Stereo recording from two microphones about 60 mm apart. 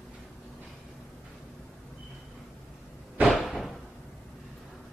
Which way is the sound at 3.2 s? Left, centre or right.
Centre.